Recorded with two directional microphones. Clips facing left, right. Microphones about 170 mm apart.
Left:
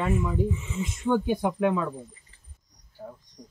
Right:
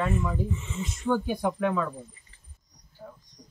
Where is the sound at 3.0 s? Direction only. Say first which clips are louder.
Left 4 dB; 25° left (ahead or behind).